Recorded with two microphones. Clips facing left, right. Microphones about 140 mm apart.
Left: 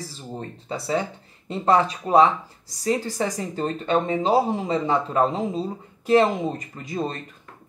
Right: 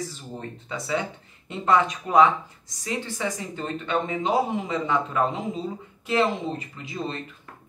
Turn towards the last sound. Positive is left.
turn(degrees=45)  # may be behind; listen again after turning